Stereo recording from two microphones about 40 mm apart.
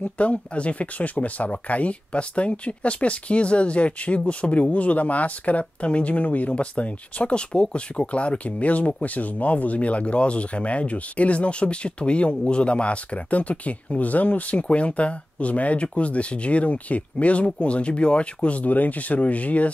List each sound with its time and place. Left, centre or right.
0.2 s speech: left